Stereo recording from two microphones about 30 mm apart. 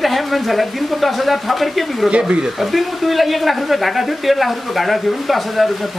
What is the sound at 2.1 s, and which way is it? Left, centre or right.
Speech, right.